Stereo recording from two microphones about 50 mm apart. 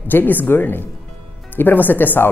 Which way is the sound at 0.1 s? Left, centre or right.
Left.